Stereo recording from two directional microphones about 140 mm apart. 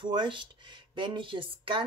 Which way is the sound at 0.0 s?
35° right (ahead or behind).